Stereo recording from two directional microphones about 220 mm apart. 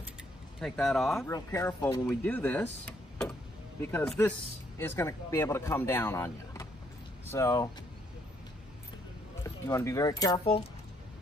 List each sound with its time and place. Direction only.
0.6 s speech: centre (ahead or behind)
1.2 s speech: 15° left (ahead or behind)
9.7 s speech: 15° left (ahead or behind)